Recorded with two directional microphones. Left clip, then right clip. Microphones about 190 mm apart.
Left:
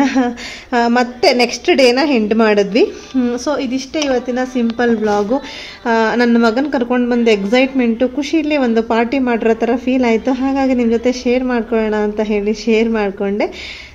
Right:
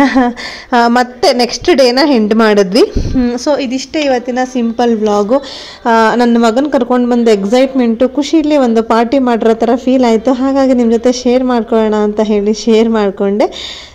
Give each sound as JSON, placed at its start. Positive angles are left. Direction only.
{"t": 0.0, "sound": "a woman's voice", "side_deg": -25}